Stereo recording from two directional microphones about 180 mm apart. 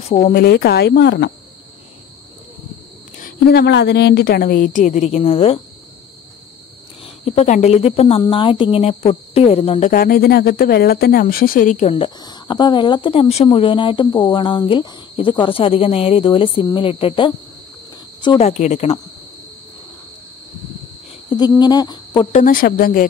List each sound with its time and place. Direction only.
0.0 s speech: 35° left (ahead or behind)
0.3 s speech: 60° left (ahead or behind)
3.2 s a woman's voice: 55° left (ahead or behind); by 5.6 s 35° left (ahead or behind)
7.2 s speech: 40° left (ahead or behind)
9.9 s speech: 55° left (ahead or behind); by 17.3 s 30° left (ahead or behind)
18.4 s speech: 40° left (ahead or behind)
21.3 s a sound: 25° left (ahead or behind)
22.3 s a woman's voice: 50° left (ahead or behind)